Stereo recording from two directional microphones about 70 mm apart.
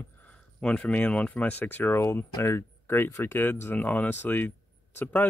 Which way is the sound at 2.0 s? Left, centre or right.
Left.